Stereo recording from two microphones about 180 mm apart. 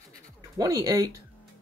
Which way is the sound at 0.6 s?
20° right (ahead or behind).